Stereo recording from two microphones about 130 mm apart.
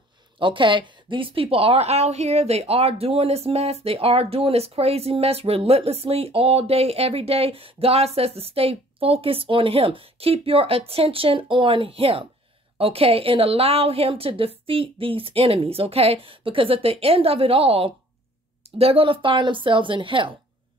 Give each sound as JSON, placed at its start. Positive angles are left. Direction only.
{"t": 0.4, "sound": "a woman's voice", "side_deg": -40}